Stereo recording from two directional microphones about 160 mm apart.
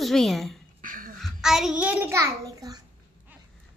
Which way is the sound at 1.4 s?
5° right (ahead or behind).